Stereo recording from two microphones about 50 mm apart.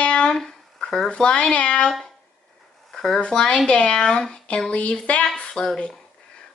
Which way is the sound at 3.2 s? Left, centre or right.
Centre.